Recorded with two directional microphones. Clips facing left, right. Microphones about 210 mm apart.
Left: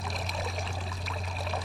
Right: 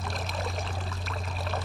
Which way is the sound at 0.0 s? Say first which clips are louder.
Right 2 dB; centre (ahead or behind).